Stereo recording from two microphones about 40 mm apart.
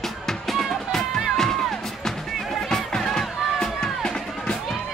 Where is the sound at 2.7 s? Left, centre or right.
Centre.